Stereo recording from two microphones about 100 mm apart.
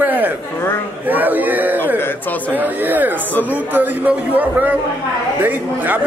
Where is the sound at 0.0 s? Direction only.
20° right (ahead or behind).